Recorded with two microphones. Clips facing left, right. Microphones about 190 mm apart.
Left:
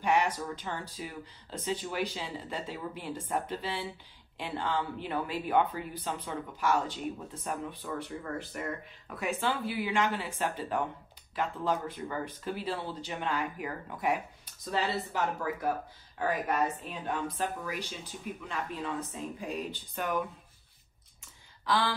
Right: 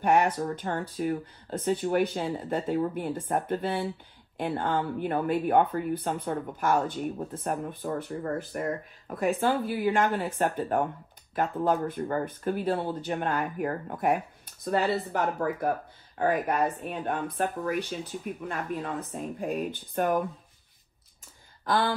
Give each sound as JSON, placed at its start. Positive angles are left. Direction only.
{"t": 0.0, "sound": "speech", "side_deg": -50}
{"t": 9.4, "sound": "speech", "side_deg": -50}